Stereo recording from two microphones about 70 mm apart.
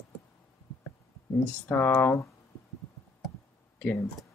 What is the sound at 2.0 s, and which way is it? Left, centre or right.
Speech, left.